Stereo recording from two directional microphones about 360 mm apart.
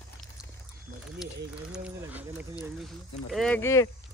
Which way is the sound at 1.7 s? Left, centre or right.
Centre.